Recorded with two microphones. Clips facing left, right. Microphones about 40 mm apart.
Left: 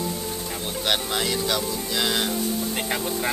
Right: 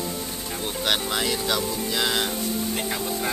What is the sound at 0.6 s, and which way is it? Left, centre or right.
Speech, centre.